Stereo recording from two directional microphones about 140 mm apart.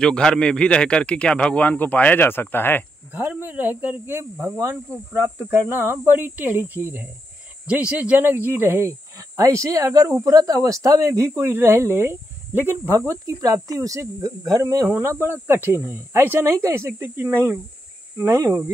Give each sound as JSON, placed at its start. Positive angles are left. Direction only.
{"t": 0.0, "sound": "speech", "side_deg": 5}
{"t": 3.1, "sound": "speech", "side_deg": -10}